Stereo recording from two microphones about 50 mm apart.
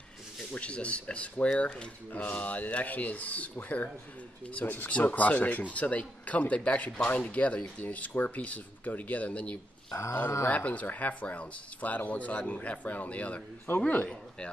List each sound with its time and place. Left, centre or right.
0.5 s speech: left